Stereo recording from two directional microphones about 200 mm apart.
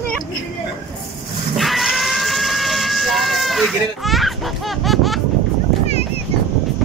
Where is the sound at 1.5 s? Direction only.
Centre (ahead or behind).